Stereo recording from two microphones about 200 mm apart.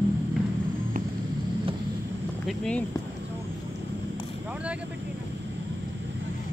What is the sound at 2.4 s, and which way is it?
Speech, 5° left (ahead or behind).